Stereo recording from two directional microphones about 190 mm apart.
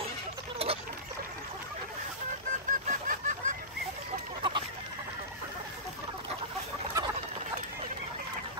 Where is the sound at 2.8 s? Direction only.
45° right (ahead or behind).